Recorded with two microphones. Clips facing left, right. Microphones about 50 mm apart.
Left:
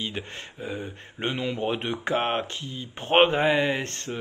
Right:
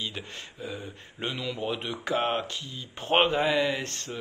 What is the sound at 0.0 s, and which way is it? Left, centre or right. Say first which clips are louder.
Speech: left 3 dB; left.